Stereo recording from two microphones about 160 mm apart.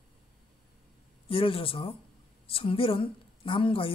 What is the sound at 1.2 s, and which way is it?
Speech, 35° left (ahead or behind).